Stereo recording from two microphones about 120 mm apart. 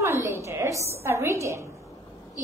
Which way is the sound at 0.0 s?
25° right (ahead or behind).